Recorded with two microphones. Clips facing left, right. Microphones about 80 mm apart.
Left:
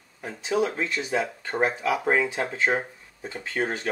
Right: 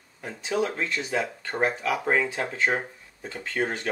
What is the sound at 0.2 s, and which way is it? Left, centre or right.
Speech, centre.